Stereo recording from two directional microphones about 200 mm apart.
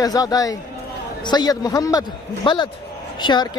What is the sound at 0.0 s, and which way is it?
A man's voice, 20° left (ahead or behind).